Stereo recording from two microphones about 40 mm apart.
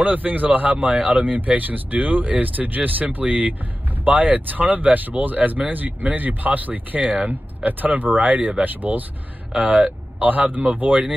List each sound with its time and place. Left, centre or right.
0.0 s speech: right